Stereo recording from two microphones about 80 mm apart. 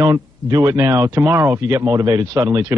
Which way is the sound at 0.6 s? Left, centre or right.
Right.